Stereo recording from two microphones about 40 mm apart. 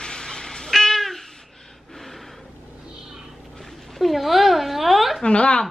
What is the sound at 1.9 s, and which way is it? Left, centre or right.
Gasp, centre.